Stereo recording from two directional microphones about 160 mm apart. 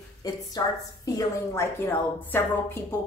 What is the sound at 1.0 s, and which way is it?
Speech, 20° left (ahead or behind).